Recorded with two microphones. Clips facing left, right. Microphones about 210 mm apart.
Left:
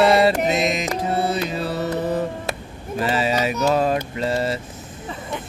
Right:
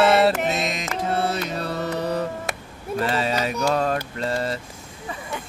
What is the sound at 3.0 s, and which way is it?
Mantra, 5° left (ahead or behind).